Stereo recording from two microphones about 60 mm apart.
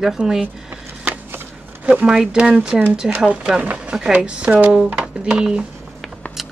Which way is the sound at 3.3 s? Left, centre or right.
Centre.